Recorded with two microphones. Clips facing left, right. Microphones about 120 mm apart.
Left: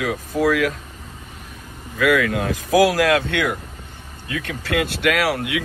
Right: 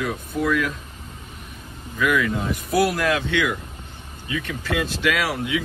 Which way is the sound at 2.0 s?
85° left.